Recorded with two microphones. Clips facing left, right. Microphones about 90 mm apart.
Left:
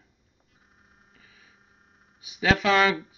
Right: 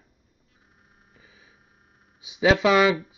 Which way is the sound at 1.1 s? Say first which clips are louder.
Right 3 dB; 15° right (ahead or behind).